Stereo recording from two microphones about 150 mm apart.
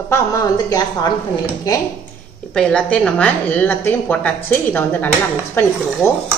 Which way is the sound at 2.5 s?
5° left (ahead or behind).